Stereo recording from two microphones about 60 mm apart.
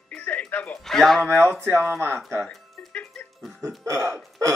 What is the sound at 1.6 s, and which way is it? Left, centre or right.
Speech, right.